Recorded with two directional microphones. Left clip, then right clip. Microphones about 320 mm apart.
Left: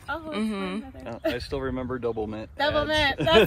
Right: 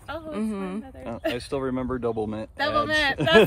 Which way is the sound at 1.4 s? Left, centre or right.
Right.